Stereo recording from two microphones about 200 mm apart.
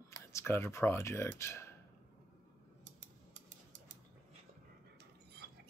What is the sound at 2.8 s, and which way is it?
Scissors, 35° right (ahead or behind).